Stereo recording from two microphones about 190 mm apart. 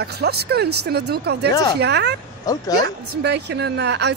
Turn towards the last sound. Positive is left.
turn(degrees=-60)  # may be behind; listen again after turning